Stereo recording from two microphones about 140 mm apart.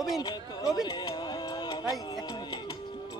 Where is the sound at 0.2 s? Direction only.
30° left (ahead or behind).